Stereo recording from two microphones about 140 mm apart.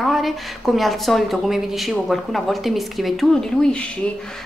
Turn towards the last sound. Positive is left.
turn(degrees=5)  # may be behind; listen again after turning